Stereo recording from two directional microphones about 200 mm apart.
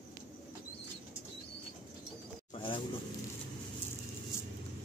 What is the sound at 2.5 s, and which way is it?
Bird, 25° left (ahead or behind).